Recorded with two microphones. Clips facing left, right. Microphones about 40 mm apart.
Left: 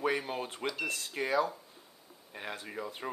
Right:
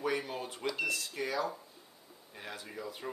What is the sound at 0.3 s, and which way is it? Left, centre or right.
Smoke detector, left.